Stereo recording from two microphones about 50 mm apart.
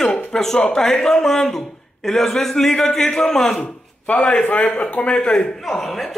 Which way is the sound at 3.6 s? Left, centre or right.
Left.